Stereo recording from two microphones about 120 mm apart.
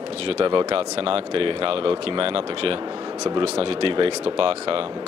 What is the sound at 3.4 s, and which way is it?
Speech, 55° right (ahead or behind).